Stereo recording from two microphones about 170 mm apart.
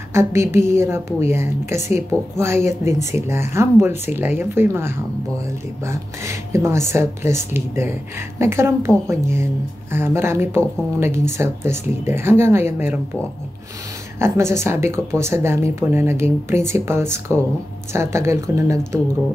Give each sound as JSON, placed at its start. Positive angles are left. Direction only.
{"t": 0.1, "sound": "speech", "side_deg": -15}
{"t": 14.2, "sound": "speech", "side_deg": -15}